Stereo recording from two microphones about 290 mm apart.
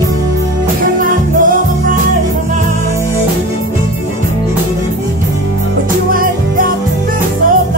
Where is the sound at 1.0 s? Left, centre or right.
Right.